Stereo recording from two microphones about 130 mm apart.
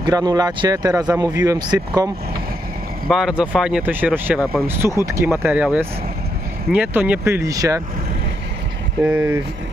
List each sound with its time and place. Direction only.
0.0 s speech: 30° right (ahead or behind)
3.1 s speech: 5° right (ahead or behind); by 7.8 s 25° right (ahead or behind)
9.0 s speech: 15° right (ahead or behind)